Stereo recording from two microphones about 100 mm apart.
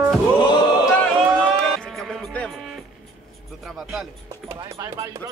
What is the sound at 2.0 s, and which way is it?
Music, centre (ahead or behind).